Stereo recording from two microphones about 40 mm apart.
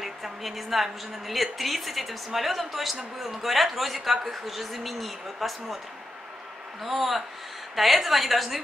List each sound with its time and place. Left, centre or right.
0.0 s a woman's voice: centre
6.8 s a woman's voice: centre